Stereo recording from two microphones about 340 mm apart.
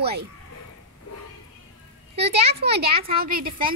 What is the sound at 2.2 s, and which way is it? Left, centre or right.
Speech, right.